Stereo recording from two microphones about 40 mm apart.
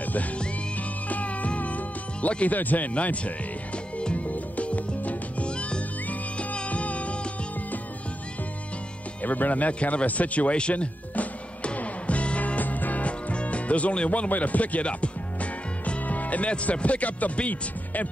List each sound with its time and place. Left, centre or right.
0.0 s music: left
2.4 s speech: left
4.0 s music: left
9.2 s music: left
13.3 s music: left
16.7 s speech: left